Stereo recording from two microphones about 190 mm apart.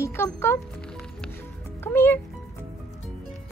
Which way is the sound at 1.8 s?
10° left (ahead or behind).